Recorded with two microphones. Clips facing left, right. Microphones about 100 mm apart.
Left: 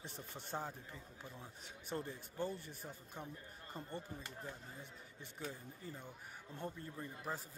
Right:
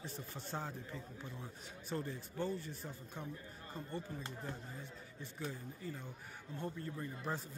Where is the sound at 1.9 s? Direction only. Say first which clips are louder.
Right 2 dB; 20° left (ahead or behind).